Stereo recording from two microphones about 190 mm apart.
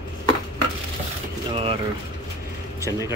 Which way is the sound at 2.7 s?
15° right (ahead or behind).